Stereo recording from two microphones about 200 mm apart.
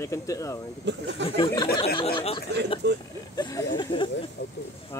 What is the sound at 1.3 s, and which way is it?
Speech, 20° left (ahead or behind).